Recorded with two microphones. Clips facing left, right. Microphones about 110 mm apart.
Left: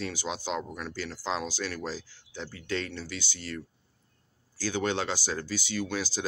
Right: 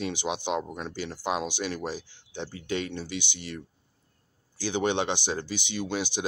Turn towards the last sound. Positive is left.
turn(degrees=-20)  # may be behind; listen again after turning